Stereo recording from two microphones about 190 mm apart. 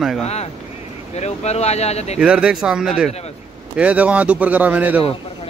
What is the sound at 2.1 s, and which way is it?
A man's voice, 5° right (ahead or behind).